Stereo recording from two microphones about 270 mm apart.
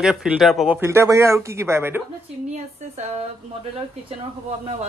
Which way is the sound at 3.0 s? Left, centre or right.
Right.